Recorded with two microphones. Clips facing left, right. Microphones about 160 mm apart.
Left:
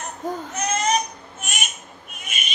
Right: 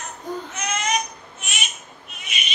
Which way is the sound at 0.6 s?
35° left (ahead or behind).